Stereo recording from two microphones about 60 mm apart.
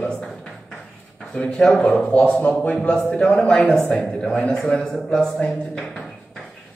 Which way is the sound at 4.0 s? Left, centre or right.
Centre.